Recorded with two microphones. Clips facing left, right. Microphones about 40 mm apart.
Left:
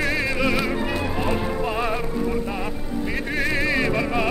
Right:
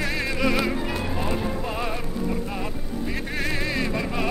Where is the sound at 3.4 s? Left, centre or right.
Centre.